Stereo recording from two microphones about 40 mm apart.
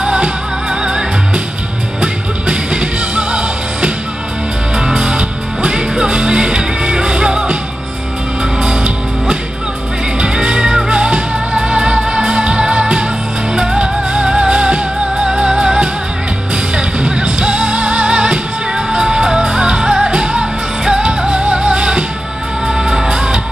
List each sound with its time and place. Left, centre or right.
0.0 s music: centre
8.6 s music: right
22.7 s music: centre